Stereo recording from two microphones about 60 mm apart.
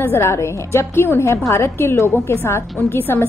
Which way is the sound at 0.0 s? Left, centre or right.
Left.